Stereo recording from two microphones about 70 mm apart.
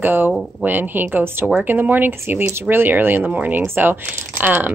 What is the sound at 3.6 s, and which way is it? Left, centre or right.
A woman's voice, right.